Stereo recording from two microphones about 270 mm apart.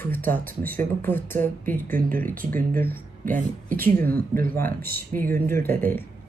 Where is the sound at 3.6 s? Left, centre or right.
Right.